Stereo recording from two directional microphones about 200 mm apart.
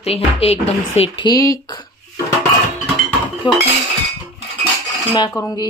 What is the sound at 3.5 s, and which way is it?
Speech, 25° left (ahead or behind).